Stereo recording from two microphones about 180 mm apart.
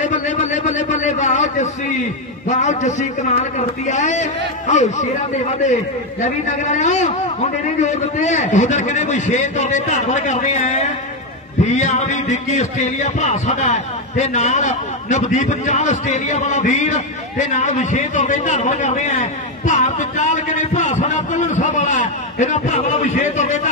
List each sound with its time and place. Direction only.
0.0 s a sound: 45° left (ahead or behind)
2.4 s a man's voice: 40° left (ahead or behind)
6.2 s a man's voice: 40° left (ahead or behind)